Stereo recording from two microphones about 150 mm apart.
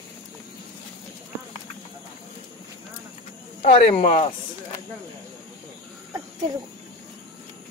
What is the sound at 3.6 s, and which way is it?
Speech, 50° left (ahead or behind).